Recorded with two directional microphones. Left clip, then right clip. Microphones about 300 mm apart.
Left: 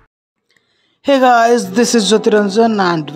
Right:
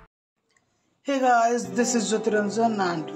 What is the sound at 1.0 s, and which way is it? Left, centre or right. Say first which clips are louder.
Speech: left 11 dB; left.